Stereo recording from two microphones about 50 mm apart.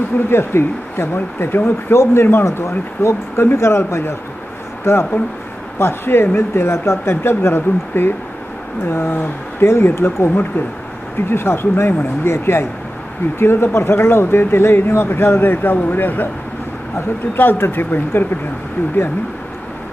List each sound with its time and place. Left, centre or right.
0.3 s speech: left
2.4 s speech: left